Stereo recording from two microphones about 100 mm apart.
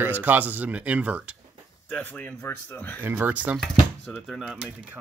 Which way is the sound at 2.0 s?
15° left (ahead or behind).